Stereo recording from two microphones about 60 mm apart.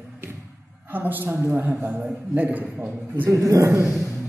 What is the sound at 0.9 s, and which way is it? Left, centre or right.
Speech, right.